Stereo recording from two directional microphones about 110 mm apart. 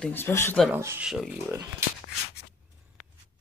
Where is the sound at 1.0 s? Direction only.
5° right (ahead or behind).